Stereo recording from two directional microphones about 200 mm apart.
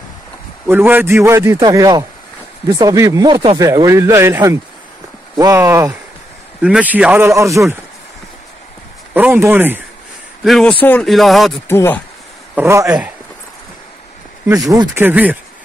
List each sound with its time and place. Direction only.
0.7 s speech: 10° right (ahead or behind)
9.1 s speech: 10° right (ahead or behind)
10.4 s speech: centre (ahead or behind)
11.6 s speech: 10° left (ahead or behind)
12.5 s speech: 15° right (ahead or behind)
14.7 s speech: 15° right (ahead or behind)